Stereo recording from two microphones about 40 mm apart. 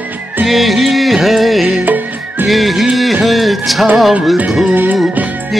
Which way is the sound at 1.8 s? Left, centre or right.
Right.